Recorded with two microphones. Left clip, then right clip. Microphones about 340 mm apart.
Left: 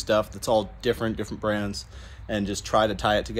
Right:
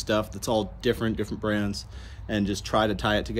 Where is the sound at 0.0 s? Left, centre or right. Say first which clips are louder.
Left 3 dB; centre.